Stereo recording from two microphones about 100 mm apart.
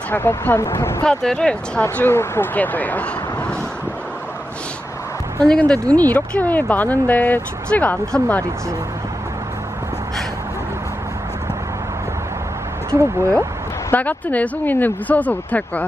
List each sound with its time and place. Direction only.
0.1 s speech: 20° left (ahead or behind)
1.0 s speech: 5° left (ahead or behind)
1.8 s speech: 20° left (ahead or behind)
5.4 s speech: 10° left (ahead or behind)
13.9 s speech: 15° left (ahead or behind)